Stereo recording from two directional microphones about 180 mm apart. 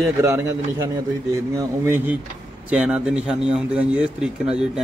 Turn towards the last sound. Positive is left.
turn(degrees=-5)  # may be behind; listen again after turning